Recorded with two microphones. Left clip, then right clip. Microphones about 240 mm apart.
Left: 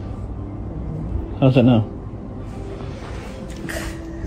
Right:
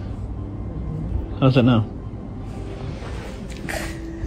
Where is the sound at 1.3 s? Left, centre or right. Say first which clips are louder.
Left 2 dB; centre.